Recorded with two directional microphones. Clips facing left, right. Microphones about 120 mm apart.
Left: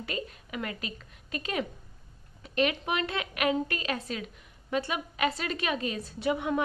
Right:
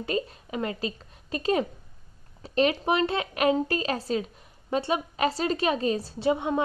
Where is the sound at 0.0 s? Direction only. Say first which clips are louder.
Right 7 dB; 30° right (ahead or behind).